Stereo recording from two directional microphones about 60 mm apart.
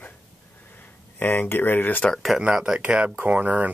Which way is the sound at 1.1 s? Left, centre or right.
Left.